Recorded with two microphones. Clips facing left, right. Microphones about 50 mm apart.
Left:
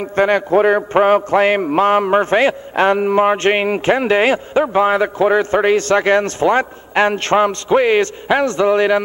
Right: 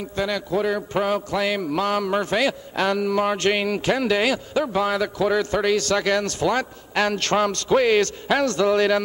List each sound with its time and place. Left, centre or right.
0.0 s a man's voice: left